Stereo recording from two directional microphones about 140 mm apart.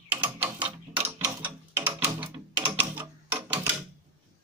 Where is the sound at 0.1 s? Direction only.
15° right (ahead or behind).